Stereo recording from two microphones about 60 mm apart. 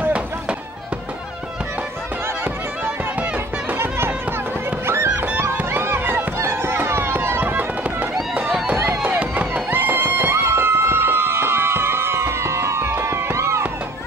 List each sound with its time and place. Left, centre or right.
0.0 s music: right
2.4 s music: right
3.7 s music: right
5.7 s run: right
8.7 s chop: right
9.2 s run: right
9.7 s music: right
12.8 s a sound: right